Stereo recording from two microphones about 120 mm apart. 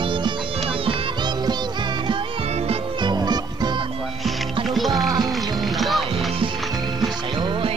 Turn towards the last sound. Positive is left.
turn(degrees=-45)  # may be behind; listen again after turning